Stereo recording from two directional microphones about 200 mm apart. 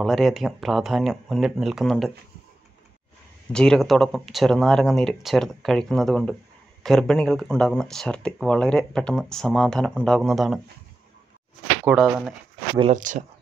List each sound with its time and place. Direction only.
0.0 s speech: centre (ahead or behind)
3.5 s speech: 5° left (ahead or behind)
11.8 s speech: centre (ahead or behind)
12.9 s speech: 40° right (ahead or behind)